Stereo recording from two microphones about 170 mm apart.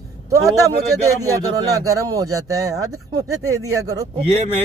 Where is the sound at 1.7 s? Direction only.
20° right (ahead or behind).